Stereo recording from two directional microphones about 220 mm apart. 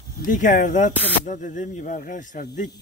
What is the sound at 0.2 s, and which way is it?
A man's voice, 35° left (ahead or behind).